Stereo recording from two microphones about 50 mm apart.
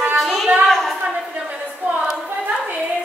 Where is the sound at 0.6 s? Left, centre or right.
Centre.